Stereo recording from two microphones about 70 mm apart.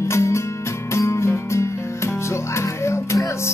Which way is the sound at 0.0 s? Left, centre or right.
Left.